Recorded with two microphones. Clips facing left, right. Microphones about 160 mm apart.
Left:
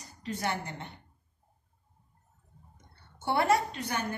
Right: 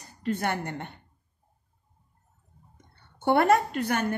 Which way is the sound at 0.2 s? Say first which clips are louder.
Right 5 dB; 55° right (ahead or behind).